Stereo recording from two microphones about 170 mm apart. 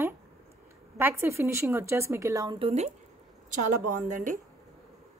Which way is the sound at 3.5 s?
50° right (ahead or behind).